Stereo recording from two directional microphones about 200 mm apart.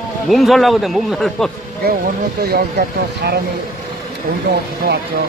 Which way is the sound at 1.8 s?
50° right (ahead or behind).